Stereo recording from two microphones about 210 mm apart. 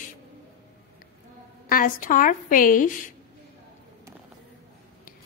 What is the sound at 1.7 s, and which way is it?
A woman's voice, 40° left (ahead or behind).